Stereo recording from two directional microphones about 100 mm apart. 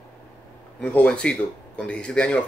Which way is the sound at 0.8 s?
10° left (ahead or behind).